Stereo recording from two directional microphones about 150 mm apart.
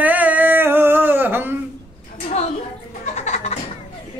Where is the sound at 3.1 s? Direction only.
50° left (ahead or behind).